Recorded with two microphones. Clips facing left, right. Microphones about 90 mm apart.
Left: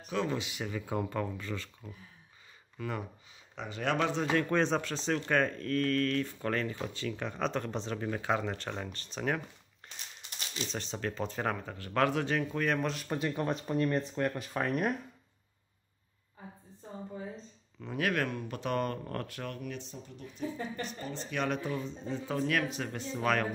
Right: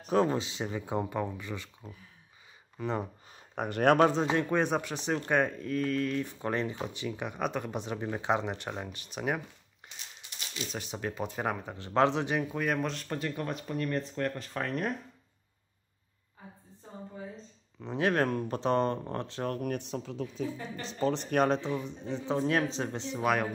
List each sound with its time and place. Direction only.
0.1 s speech: 35° right (ahead or behind)
3.3 s speech: 50° right (ahead or behind)
4.3 s speech: 15° right (ahead or behind)
10.7 s speech: 10° right (ahead or behind)
13.1 s speech: 20° left (ahead or behind)
17.8 s speech: 25° right (ahead or behind)
19.5 s speech: 50° right (ahead or behind); by 21.3 s 80° right
21.5 s speech: 25° right (ahead or behind)